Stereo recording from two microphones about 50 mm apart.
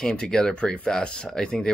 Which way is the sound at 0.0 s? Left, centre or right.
Centre.